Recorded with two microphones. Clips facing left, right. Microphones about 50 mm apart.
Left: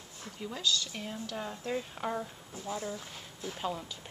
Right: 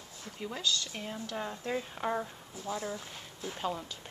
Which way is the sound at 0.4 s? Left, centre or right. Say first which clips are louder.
Left 1 dB; centre.